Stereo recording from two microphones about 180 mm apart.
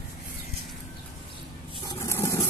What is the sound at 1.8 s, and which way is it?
Vehicle, 20° left (ahead or behind).